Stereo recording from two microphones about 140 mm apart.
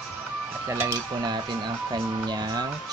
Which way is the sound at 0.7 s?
20° right (ahead or behind).